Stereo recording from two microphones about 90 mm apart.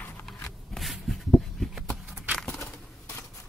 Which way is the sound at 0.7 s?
Centre (ahead or behind).